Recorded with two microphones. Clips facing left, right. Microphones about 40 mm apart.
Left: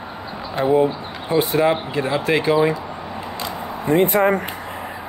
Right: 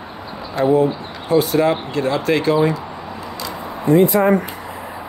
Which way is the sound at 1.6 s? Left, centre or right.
Centre.